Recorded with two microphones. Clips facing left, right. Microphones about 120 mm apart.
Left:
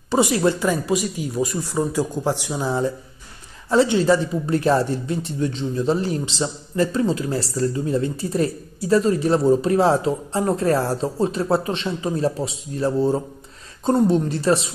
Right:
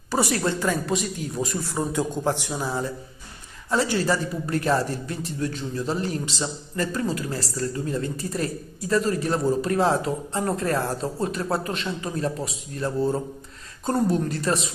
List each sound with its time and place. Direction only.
0.1 s a man's voice: 15° left (ahead or behind)
2.4 s a man's voice: 15° left (ahead or behind)
3.7 s speech: 25° left (ahead or behind)